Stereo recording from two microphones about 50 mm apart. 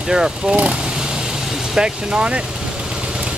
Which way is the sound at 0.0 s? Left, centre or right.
Centre.